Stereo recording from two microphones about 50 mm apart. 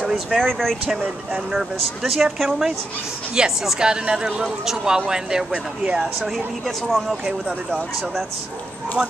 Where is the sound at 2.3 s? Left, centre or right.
Centre.